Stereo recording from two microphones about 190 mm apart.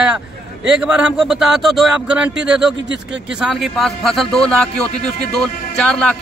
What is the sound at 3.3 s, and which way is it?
A man's voice, centre (ahead or behind).